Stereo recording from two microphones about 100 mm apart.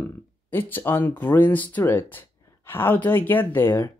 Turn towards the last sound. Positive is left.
turn(degrees=20)  # may be behind; listen again after turning